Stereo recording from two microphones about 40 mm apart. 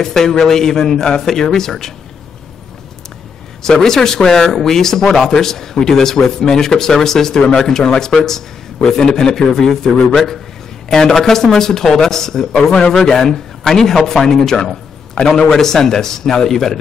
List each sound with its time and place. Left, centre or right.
0.0 s speech: centre
3.6 s speech: centre